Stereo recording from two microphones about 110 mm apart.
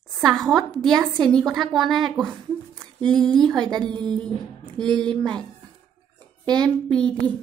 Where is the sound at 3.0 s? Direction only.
5° left (ahead or behind).